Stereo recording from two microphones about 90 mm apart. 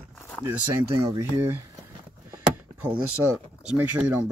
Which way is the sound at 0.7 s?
35° right (ahead or behind).